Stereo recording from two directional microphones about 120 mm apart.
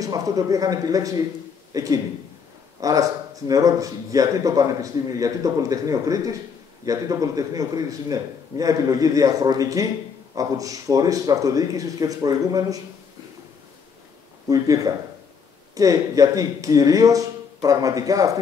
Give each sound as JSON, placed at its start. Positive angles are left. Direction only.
{"t": 0.0, "sound": "speech", "side_deg": -30}
{"t": 14.5, "sound": "speech", "side_deg": -30}